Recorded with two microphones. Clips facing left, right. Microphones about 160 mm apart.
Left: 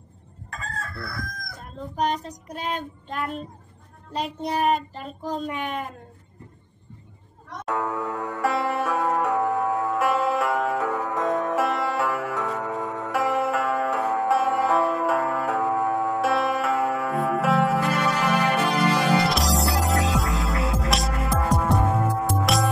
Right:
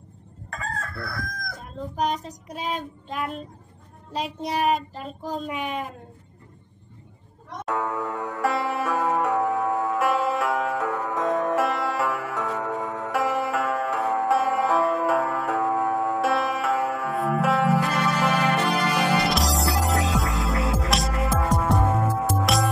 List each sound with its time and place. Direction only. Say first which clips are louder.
0.5 s chicken: right 2 dB; 65° right (ahead or behind)
1.6 s a child's voice: left 1 dB; centre (ahead or behind)
7.6 s music: even; centre (ahead or behind)
19.0 s music: left 1 dB; centre (ahead or behind)